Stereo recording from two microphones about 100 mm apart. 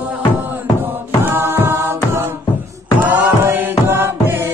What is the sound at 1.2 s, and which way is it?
Music, 20° right (ahead or behind).